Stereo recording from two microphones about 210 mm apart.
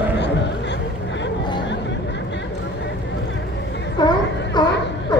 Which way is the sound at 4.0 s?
20° left (ahead or behind).